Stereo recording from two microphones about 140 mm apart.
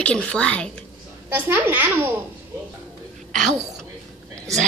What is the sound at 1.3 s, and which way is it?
Speech, 15° right (ahead or behind).